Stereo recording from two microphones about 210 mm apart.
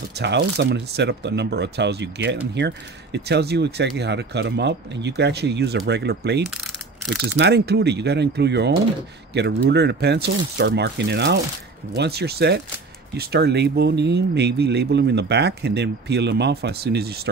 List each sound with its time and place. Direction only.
0.1 s speech: 55° right (ahead or behind)